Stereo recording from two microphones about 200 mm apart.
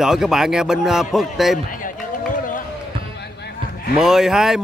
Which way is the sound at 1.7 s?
40° left (ahead or behind).